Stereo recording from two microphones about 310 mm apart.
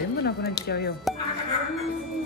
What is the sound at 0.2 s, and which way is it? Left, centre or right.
Speech, left.